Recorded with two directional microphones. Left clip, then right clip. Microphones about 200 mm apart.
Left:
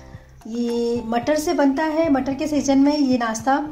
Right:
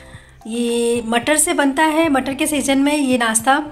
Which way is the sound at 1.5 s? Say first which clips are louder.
Right 6 dB; 10° right (ahead or behind).